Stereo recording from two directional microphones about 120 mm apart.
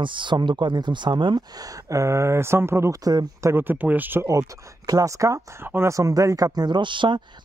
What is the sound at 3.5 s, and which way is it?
Speech, 15° right (ahead or behind).